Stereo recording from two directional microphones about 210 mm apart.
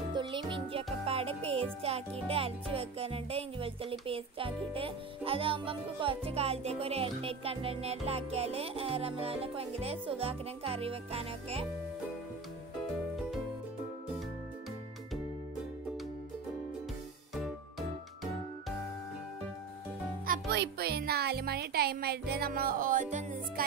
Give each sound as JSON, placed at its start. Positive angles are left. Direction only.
{"t": 0.1, "sound": "music", "side_deg": -20}
{"t": 17.4, "sound": "music", "side_deg": 0}
{"t": 20.2, "sound": "speech", "side_deg": -50}